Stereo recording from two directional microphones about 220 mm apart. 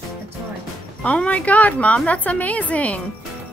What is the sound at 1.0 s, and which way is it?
A woman's voice, 5° left (ahead or behind).